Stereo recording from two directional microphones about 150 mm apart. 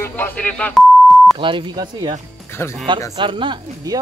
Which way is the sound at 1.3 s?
35° right (ahead or behind).